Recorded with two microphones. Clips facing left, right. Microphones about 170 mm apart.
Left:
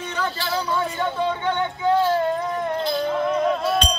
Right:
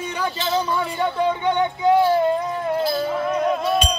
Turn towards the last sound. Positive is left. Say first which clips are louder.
# right 1 dB
turn(degrees=-5)  # may be behind; listen again after turning